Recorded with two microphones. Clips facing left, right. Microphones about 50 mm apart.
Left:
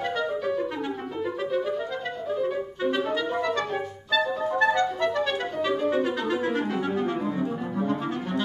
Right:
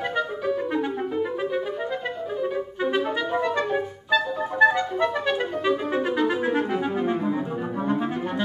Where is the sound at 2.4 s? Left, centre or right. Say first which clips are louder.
Right 2 dB; centre.